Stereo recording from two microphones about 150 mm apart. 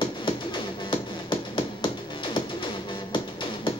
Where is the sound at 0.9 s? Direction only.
35° left (ahead or behind).